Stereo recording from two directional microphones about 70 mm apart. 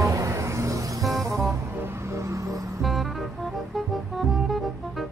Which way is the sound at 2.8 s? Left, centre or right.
Centre.